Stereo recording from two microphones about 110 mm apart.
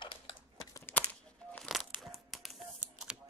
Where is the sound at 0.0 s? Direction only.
50° left (ahead or behind).